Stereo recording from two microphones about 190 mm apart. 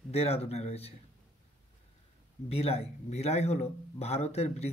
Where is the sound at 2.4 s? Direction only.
30° left (ahead or behind).